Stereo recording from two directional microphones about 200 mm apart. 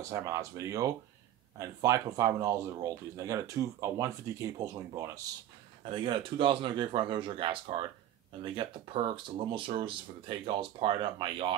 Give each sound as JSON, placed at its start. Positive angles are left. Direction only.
{"t": 0.1, "sound": "speech", "side_deg": -15}
{"t": 8.5, "sound": "speech", "side_deg": -25}